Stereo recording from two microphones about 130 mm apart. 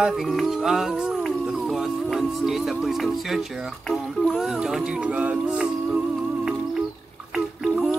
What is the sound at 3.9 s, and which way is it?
Speech, centre (ahead or behind).